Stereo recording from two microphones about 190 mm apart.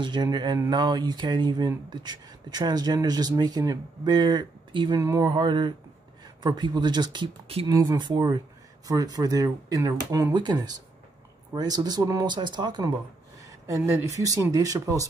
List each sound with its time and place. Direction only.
0.0 s speech: 25° right (ahead or behind)